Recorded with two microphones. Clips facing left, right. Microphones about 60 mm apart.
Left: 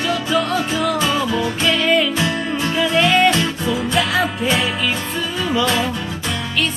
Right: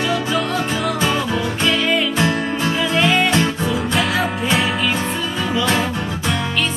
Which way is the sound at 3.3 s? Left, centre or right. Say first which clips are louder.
Right 2 dB; right.